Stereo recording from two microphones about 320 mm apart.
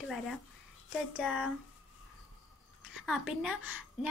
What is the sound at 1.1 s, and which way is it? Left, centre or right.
Speech, centre.